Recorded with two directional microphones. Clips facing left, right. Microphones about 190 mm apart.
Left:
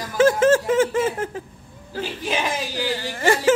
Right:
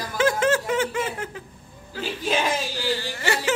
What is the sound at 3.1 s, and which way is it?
Speech, 50° left (ahead or behind).